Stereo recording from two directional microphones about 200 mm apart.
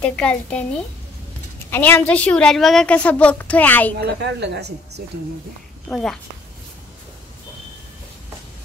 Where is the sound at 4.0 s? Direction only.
60° right (ahead or behind).